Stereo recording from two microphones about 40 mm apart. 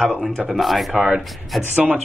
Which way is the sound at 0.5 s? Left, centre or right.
Centre.